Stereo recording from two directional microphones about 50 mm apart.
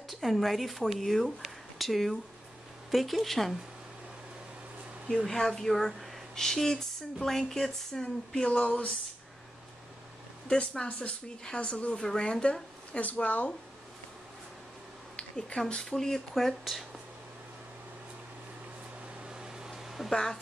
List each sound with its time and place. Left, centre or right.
0.1 s speech: centre
5.2 s speech: centre
10.5 s speech: centre
12.9 s speech: left
15.1 s a sound: centre
15.6 s speech: centre
19.2 s a sound: centre
20.1 s speech: centre